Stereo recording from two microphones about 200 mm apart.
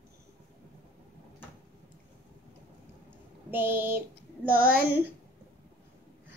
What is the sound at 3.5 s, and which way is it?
Child singing, 10° right (ahead or behind).